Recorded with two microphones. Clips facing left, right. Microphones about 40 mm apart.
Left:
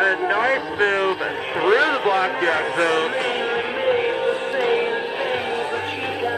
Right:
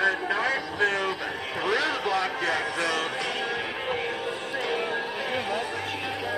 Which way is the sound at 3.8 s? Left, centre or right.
Left.